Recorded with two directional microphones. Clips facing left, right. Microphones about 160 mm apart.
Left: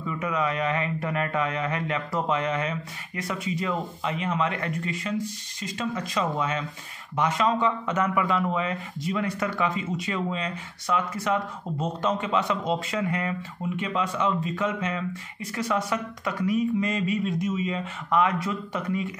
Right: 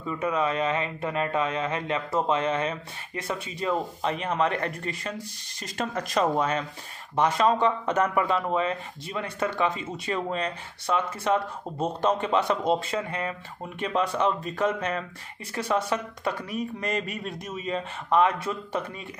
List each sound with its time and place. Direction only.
0.0 s speech: 30° right (ahead or behind)
5.6 s speech: 50° right (ahead or behind)
15.5 s speech: 30° right (ahead or behind)
16.9 s speech: 55° right (ahead or behind)
17.5 s speech: 35° right (ahead or behind)